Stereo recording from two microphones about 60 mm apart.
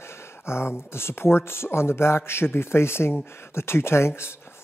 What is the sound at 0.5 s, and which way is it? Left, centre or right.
Speech, left.